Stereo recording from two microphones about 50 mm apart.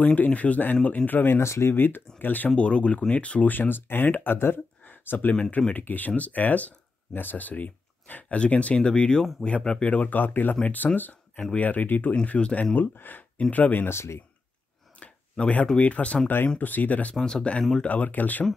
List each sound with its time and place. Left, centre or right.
0.0 s speech: left
1.4 s speech: left
1.8 s speech: left
2.5 s speech: left
3.4 s speech: left
5.3 s speech: left
5.7 s speech: left
12.4 s speech: left
12.7 s speech: left
13.8 s speech: left
15.0 s a sound: left
15.8 s speech: left
17.1 s speech: centre
17.8 s speech: left